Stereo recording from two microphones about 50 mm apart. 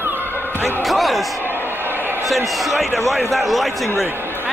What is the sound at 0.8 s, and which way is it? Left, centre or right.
Speech, centre.